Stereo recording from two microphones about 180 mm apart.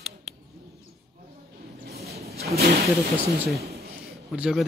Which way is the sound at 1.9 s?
60° right (ahead or behind).